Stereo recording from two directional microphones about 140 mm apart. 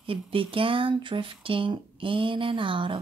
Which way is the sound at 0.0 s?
40° right (ahead or behind).